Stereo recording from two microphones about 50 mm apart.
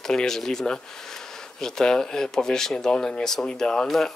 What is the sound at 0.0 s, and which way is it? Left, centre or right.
Speech, centre.